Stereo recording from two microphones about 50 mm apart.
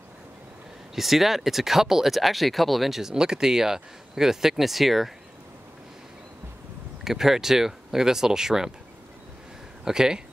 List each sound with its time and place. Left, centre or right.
0.9 s speech: centre
7.1 s speech: centre
9.8 s speech: centre